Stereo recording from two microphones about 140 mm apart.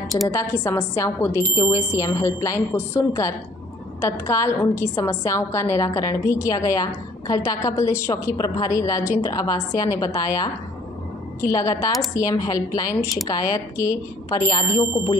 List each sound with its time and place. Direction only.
0.3 s a woman's voice: 20° left (ahead or behind)
15.0 s speech: 15° left (ahead or behind)